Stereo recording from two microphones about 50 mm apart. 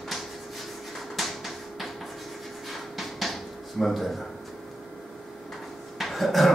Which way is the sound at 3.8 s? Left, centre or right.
Centre.